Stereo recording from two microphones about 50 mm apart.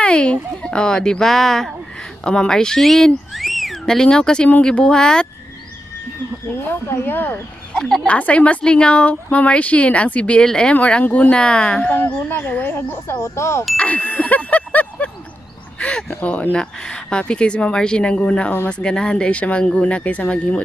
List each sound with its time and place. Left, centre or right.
0.0 s speech: left
2.8 s a sound: centre
3.8 s speech: centre
6.9 s speech: left
7.7 s speech: centre
8.1 s a woman's voice: left
10.4 s speech: centre
10.7 s a woman's voice: left
12.2 s speech: left
13.0 s speech: left
13.7 s ding: left
15.8 s a sound: centre
16.1 s speech: left
16.5 s a woman's voice: centre